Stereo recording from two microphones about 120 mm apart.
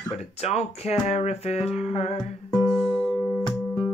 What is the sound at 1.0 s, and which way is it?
Music, 65° left (ahead or behind).